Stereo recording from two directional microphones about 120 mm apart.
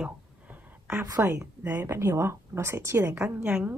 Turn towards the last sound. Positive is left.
turn(degrees=-15)  # may be behind; listen again after turning